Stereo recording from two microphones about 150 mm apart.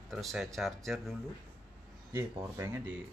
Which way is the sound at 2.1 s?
20° right (ahead or behind).